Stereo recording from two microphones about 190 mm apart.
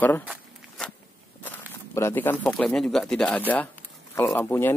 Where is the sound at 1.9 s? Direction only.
10° left (ahead or behind).